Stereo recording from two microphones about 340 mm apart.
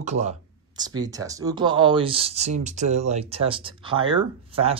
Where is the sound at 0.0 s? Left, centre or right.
Centre.